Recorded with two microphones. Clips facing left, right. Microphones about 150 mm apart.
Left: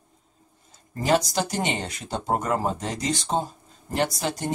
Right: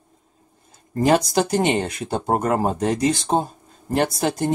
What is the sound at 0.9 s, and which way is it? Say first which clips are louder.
Speech: right 5 dB; 50° right (ahead or behind).